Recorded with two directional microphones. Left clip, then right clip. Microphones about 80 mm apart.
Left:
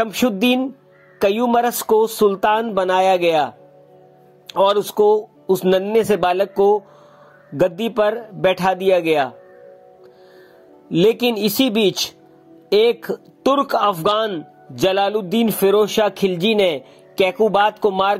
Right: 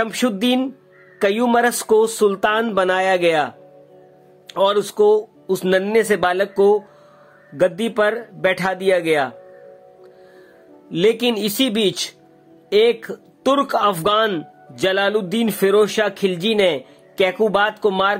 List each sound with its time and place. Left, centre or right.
0.1 s speech: left
10.9 s speech: left